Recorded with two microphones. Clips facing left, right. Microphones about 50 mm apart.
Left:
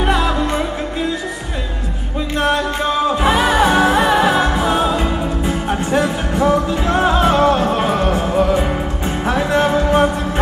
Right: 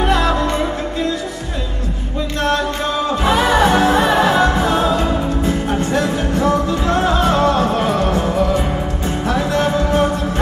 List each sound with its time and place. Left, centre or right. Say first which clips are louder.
2.3 s music: left 1 dB; centre